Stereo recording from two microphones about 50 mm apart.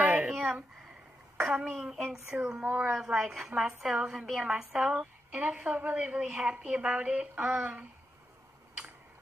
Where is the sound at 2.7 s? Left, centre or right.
Centre; by 7.8 s right.